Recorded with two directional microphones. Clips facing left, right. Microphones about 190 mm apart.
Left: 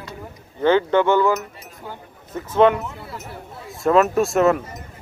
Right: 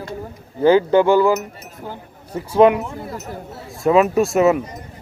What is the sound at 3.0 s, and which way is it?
Speech, 40° right (ahead or behind).